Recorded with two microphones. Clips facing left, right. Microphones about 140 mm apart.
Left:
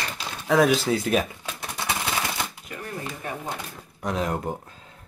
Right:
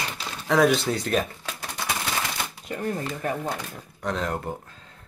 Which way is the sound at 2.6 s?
35° right (ahead or behind).